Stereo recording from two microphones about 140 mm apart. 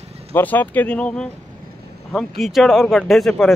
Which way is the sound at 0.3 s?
15° left (ahead or behind).